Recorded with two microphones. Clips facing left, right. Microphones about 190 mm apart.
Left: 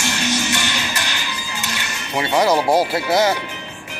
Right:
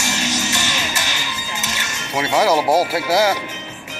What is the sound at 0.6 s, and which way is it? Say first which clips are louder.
Music: even; 45° right (ahead or behind).